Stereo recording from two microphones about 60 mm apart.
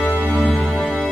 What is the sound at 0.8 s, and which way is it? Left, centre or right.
Music, centre.